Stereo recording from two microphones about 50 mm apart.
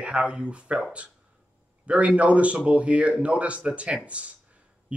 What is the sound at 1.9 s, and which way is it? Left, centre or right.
Speech, right.